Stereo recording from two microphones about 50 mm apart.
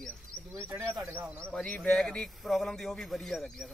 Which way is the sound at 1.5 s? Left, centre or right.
Centre.